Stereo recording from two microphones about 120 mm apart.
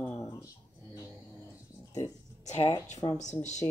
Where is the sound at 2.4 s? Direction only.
75° left (ahead or behind).